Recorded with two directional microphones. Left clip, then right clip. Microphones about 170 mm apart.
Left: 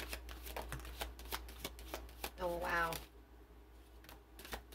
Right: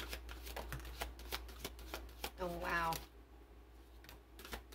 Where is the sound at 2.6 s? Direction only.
35° left (ahead or behind).